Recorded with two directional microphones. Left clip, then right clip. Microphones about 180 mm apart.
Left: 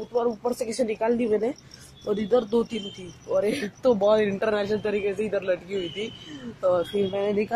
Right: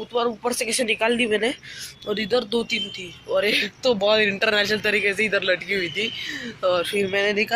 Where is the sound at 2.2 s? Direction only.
25° left (ahead or behind).